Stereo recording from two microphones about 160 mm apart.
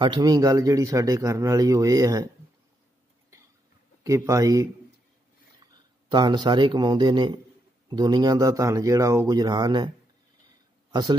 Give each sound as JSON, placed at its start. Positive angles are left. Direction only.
{"t": 0.0, "sound": "speech", "side_deg": -25}
{"t": 4.0, "sound": "speech", "side_deg": -20}
{"t": 6.0, "sound": "speech", "side_deg": -30}
{"t": 10.9, "sound": "speech", "side_deg": -25}